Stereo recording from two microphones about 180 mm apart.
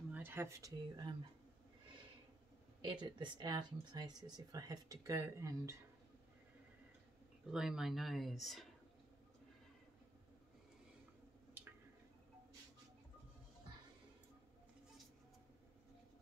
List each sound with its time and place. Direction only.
0.1 s speech: 10° right (ahead or behind)
2.8 s speech: 25° right (ahead or behind)
7.4 s speech: 5° right (ahead or behind)